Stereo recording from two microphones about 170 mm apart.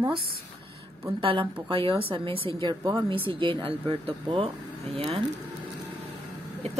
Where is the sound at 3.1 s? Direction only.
30° right (ahead or behind).